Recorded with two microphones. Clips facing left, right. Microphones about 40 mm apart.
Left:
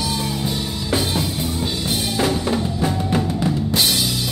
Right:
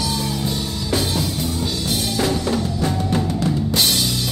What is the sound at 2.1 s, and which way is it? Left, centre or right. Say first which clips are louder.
Drum kit: left 1 dB; centre.